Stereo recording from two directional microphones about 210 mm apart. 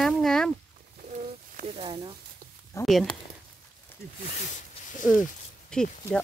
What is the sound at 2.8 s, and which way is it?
Speech, centre (ahead or behind).